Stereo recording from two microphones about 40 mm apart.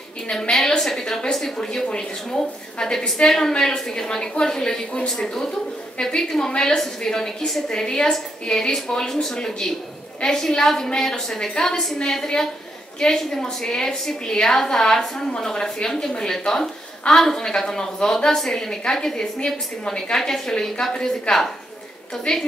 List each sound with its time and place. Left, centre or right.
0.5 s a woman's voice: centre